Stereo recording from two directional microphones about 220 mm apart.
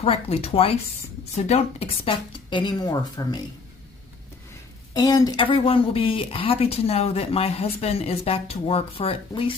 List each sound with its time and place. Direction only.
0.0 s speech: 30° left (ahead or behind)
4.9 s speech: 15° left (ahead or behind)